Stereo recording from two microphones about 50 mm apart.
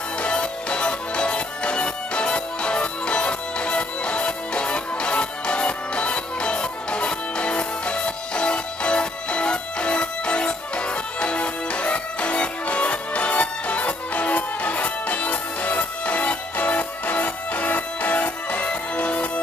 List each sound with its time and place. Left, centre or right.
0.2 s music: left